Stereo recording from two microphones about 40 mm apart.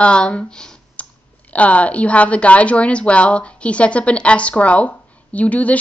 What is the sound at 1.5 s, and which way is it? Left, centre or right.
A woman's voice, left.